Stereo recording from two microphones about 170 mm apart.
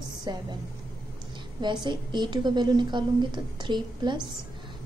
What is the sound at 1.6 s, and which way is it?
A woman's voice, 25° right (ahead or behind).